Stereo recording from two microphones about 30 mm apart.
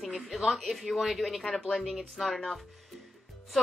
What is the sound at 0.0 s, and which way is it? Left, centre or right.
Speech, centre.